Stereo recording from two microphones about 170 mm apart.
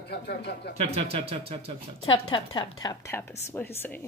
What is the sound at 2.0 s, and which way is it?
A woman's voice, 30° left (ahead or behind).